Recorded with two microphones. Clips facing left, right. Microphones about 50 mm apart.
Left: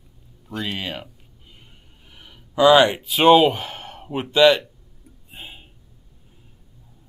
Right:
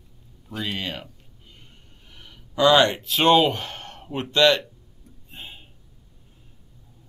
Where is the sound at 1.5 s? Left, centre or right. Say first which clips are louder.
Left 1 dB; centre.